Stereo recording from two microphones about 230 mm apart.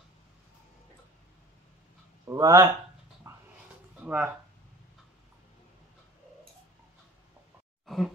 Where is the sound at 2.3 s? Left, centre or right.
Centre.